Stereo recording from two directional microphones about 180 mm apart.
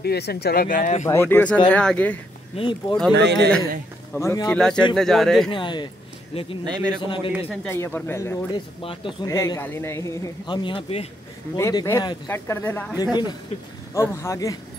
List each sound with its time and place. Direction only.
0.0 s speech: 65° left (ahead or behind); by 1.0 s 45° left (ahead or behind)
1.0 s a man's voice: 15° left (ahead or behind)
2.5 s speech: 30° left (ahead or behind)
3.2 s speech: 70° right (ahead or behind)
4.2 s a man's voice: 15° left (ahead or behind)
4.6 s speech: 5° left (ahead or behind)
5.5 s speech: 25° left (ahead or behind)
6.6 s a man's voice: 20° right (ahead or behind)
7.0 s speech: 30° left (ahead or behind)
7.6 s a man's voice: 15° left (ahead or behind)
8.5 s speech: 25° left (ahead or behind)
9.3 s a man's voice: 15° left (ahead or behind); by 11.1 s 30° left (ahead or behind)
11.5 s a man's voice: 15° left (ahead or behind)